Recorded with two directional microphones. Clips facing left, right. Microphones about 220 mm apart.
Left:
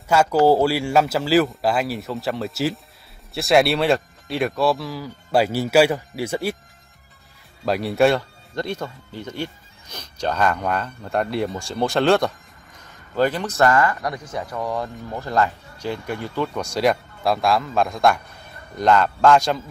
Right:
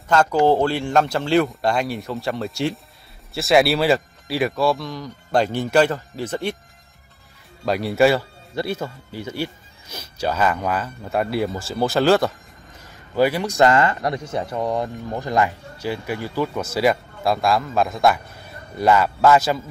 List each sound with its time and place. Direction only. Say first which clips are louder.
0.1 s speech: left 1 dB; 10° left (ahead or behind)
7.6 s speech: right 1 dB; centre (ahead or behind)